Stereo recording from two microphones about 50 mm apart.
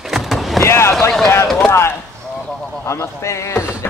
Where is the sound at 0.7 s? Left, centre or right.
Left.